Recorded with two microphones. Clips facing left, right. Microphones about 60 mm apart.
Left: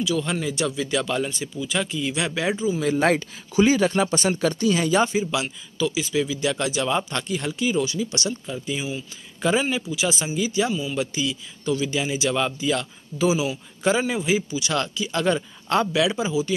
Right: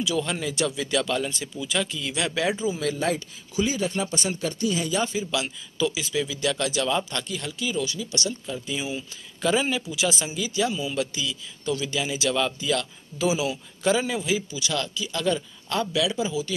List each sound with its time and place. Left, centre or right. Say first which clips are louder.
0.2 s speech: left 1 dB; centre
2.5 s a man's voice: left 3 dB; centre
3.0 s speech: left 6 dB; left
5.8 s speech: left 2 dB; centre
6.1 s speech: left 3 dB; centre; by 8.3 s left
8.3 s speech: left 2 dB; centre
10.7 s a man's voice: left 2 dB; centre
13.3 s a man's voice: left 1 dB; centre
13.8 s speech: left 2 dB; centre
14.7 s speech: left 3 dB; left
16.3 s speech: left 5 dB; left